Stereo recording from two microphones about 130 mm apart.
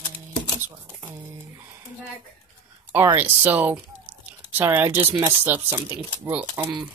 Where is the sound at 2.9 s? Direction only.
15° right (ahead or behind).